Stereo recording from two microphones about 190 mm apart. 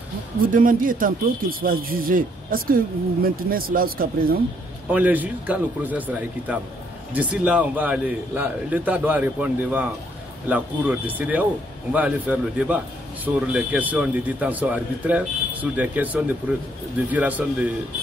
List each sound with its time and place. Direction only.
0.4 s speech: 45° right (ahead or behind)
4.9 s a man's voice: 10° right (ahead or behind)